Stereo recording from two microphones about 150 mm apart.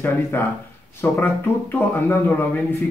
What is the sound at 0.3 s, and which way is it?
Speech, 15° left (ahead or behind).